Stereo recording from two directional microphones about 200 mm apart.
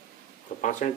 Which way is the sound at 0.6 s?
40° left (ahead or behind).